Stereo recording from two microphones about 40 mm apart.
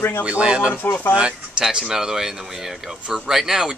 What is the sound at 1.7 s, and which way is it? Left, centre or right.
Speech, centre.